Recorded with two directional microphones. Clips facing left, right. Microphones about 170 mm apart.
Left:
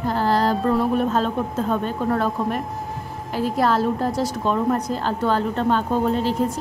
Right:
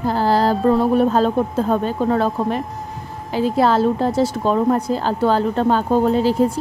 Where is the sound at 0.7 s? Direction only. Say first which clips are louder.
Right 5 dB; 35° right (ahead or behind).